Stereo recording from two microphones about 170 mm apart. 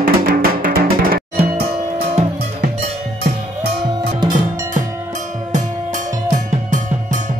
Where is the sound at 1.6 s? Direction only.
35° right (ahead or behind).